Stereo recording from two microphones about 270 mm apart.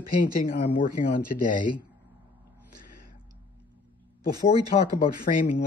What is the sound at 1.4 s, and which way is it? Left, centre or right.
Speech, left.